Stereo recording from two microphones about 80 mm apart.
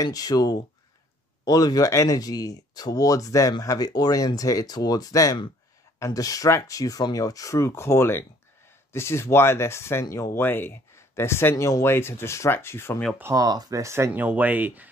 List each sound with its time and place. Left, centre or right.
0.0 s speech: left
10.0 s speech: left
10.3 s speech: left
13.2 s speech: right
14.1 s speech: right